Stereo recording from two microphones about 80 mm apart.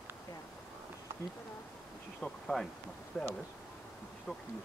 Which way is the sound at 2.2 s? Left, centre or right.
Centre.